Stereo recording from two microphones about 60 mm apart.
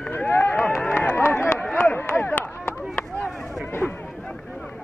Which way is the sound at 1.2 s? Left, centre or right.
Left.